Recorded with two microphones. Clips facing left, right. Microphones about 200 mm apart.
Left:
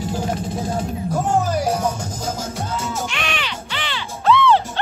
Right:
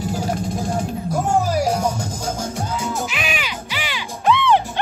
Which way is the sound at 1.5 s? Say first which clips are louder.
Right 1 dB; 10° right (ahead or behind).